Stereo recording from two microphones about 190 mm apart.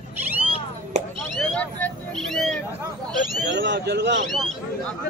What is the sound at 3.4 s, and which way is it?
Speech, 65° right (ahead or behind).